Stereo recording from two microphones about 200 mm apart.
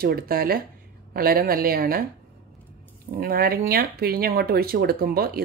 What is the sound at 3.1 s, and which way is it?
Speech, 45° right (ahead or behind).